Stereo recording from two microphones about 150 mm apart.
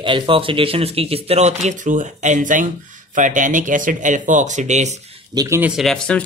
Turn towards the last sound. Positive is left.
turn(degrees=0)  # may be behind; listen again after turning